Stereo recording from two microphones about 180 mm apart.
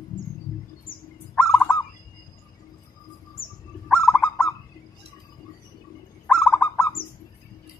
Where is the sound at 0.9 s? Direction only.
55° left (ahead or behind).